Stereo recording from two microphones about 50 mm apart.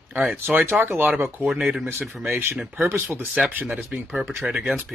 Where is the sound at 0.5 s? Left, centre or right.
Right.